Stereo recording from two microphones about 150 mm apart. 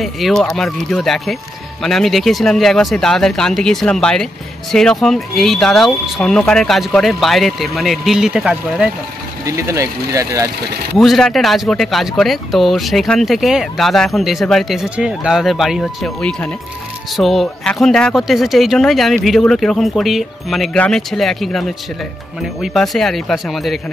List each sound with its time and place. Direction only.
0.0 s speech: centre (ahead or behind)
9.4 s speech: 20° right (ahead or behind)
11.0 s speech: centre (ahead or behind)